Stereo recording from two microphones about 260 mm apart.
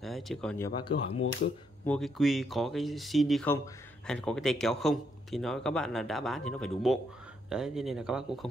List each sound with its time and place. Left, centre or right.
0.0 s speech: centre
0.7 s speech: centre
1.9 s speech: centre